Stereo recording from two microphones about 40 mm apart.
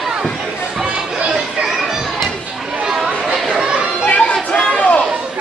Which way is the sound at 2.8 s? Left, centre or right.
Centre.